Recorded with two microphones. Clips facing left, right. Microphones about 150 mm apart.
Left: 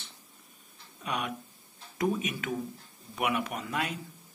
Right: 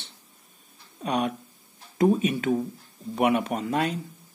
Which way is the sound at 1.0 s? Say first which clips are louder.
Right 8 dB; 35° right (ahead or behind).